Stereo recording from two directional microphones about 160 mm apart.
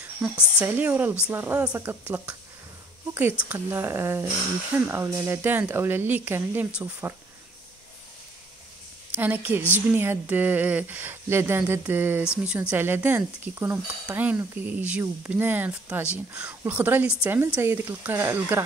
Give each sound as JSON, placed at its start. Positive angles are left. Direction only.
{"t": 0.0, "sound": "speech", "side_deg": -5}
{"t": 9.1, "sound": "a woman's voice", "side_deg": -10}